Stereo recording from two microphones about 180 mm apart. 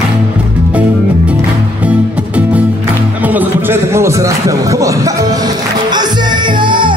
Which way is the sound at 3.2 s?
10° right (ahead or behind).